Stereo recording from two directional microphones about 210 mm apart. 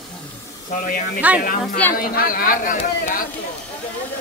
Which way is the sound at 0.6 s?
35° left (ahead or behind).